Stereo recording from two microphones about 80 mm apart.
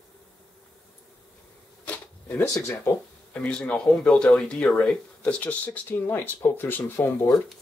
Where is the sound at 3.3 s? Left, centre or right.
Centre.